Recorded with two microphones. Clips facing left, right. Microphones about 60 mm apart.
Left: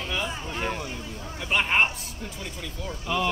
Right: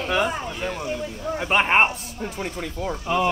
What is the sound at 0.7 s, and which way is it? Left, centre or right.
Speech, right.